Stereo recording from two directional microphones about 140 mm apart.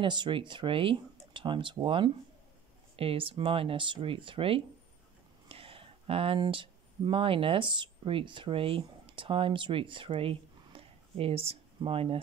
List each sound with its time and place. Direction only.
0.0 s speech: 35° right (ahead or behind)